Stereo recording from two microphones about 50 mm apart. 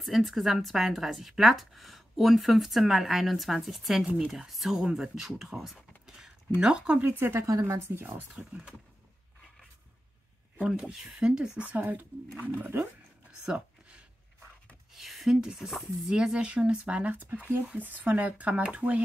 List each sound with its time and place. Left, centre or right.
0.0 s a woman's voice: centre
4.0 s speech: right
4.3 s a woman's voice: centre
7.0 s speech: right
7.3 s a woman's voice: right
8.4 s speech: centre
10.9 s speech: centre
12.7 s speech: right
13.5 s a sound: right
15.0 s a sound: centre
15.4 s speech: centre